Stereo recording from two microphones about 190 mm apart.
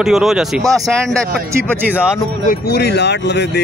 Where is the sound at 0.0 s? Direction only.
Centre (ahead or behind).